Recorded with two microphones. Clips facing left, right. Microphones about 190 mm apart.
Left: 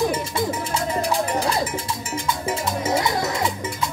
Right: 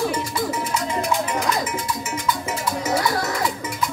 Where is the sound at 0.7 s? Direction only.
30° left (ahead or behind).